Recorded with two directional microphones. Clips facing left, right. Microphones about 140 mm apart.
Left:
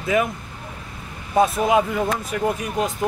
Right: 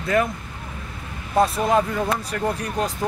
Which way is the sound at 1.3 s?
Centre (ahead or behind).